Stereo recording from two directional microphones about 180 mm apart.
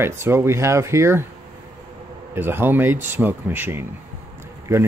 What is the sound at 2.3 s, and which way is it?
Speech, 10° right (ahead or behind).